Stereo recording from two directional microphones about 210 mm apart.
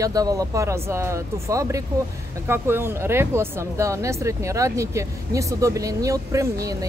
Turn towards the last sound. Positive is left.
turn(degrees=-15)  # may be behind; listen again after turning